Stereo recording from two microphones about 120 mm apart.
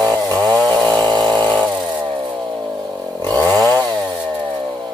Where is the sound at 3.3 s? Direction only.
30° right (ahead or behind).